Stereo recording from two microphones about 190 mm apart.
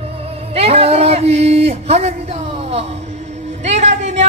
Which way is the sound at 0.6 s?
30° right (ahead or behind).